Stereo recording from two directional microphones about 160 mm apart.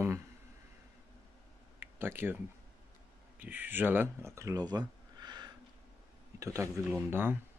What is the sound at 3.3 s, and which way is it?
Speech, 10° right (ahead or behind).